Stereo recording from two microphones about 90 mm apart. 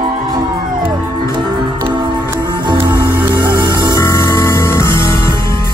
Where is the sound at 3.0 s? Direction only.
20° right (ahead or behind).